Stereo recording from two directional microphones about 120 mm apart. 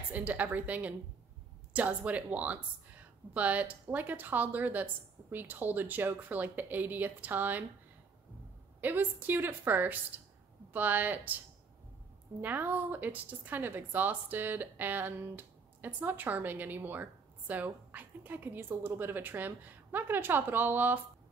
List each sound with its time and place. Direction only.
0.1 s a woman's voice: 15° right (ahead or behind)
8.8 s a woman's voice: 15° right (ahead or behind)
12.4 s a woman's voice: 15° right (ahead or behind)